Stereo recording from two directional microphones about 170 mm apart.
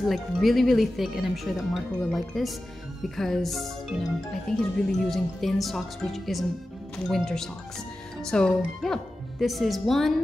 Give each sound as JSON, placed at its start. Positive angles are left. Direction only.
{"t": 0.0, "sound": "speech", "side_deg": 0}